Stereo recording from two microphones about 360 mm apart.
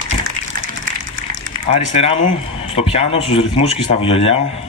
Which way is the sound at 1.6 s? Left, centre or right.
Centre.